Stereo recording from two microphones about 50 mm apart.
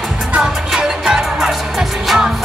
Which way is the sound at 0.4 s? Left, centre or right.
Centre.